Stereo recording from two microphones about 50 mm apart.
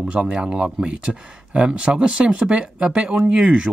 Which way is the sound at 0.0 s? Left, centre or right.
Centre.